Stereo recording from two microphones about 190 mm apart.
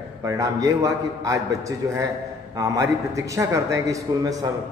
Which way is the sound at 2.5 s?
15° right (ahead or behind).